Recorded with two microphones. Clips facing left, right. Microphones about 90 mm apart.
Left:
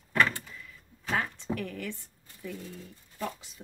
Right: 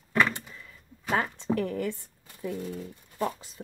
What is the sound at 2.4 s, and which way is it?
Speech, 40° right (ahead or behind).